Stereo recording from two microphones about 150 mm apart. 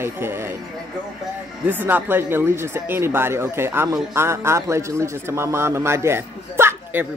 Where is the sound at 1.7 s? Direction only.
10° right (ahead or behind).